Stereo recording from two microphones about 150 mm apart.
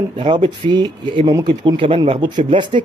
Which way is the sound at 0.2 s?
35° right (ahead or behind).